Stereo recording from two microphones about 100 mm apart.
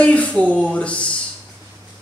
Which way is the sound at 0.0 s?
15° left (ahead or behind).